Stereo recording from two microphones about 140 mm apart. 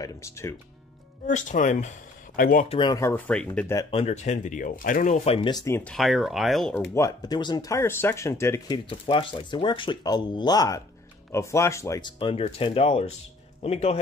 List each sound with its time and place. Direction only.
0.0 s speech: 20° left (ahead or behind)
1.2 s speech: 65° left (ahead or behind)
2.7 s speech: 35° left (ahead or behind)
3.3 s speech: 5° left (ahead or behind)
3.9 s speech: 50° left (ahead or behind)
5.5 s speech: 25° left (ahead or behind)
5.9 s speech: centre (ahead or behind)
6.7 s speech: 20° left (ahead or behind)
8.7 s speech: 35° left (ahead or behind); by 12.1 s 20° left (ahead or behind)
12.2 s a man's voice: 40° left (ahead or behind)